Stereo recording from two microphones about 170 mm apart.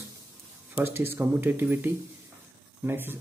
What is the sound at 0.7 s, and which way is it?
A man's voice, 10° right (ahead or behind).